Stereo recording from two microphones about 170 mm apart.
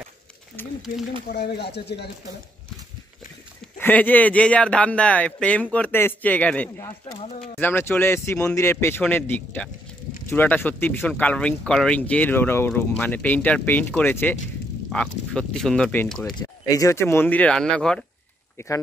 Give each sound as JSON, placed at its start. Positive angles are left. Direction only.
{"t": 1.3, "sound": "speech", "side_deg": 70}
{"t": 3.7, "sound": "speech", "side_deg": 10}
{"t": 7.2, "sound": "speech", "side_deg": 35}
{"t": 7.5, "sound": "speech", "side_deg": 15}
{"t": 16.3, "sound": "speech", "side_deg": 20}
{"t": 18.6, "sound": "speech", "side_deg": 15}